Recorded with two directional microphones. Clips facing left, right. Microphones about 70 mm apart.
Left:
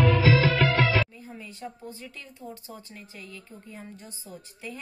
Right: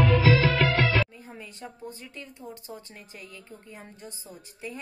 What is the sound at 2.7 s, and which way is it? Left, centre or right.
Speech, right.